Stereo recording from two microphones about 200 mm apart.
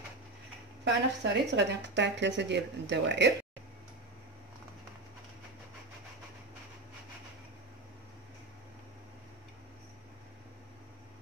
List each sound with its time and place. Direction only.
0.8 s speech: 60° right (ahead or behind)